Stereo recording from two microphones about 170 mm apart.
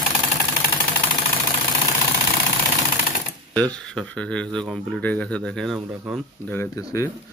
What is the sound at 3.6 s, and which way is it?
Speech, 5° left (ahead or behind).